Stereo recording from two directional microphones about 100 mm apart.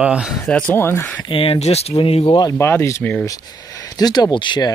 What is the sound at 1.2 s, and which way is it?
Speech, 70° left (ahead or behind).